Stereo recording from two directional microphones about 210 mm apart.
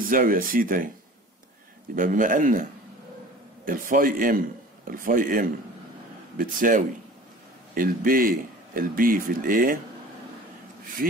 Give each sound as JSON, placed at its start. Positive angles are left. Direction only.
{"t": 0.0, "sound": "speech", "side_deg": -40}
{"t": 2.0, "sound": "speech", "side_deg": -40}
{"t": 3.6, "sound": "speech", "side_deg": -40}
{"t": 11.0, "sound": "speech", "side_deg": -45}